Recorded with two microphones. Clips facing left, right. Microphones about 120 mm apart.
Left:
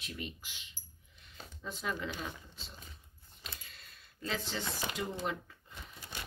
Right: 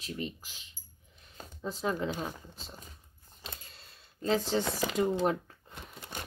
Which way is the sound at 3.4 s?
30° right (ahead or behind).